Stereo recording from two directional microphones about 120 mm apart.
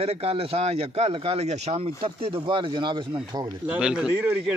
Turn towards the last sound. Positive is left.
turn(degrees=-10)  # may be behind; listen again after turning